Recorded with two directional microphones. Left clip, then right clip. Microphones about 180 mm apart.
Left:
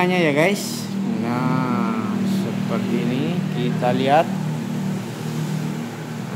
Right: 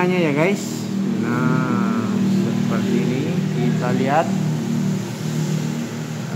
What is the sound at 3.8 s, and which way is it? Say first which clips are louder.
Speech: left 3 dB; 25° left (ahead or behind).